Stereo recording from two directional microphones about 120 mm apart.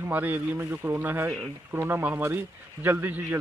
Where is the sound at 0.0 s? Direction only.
15° right (ahead or behind).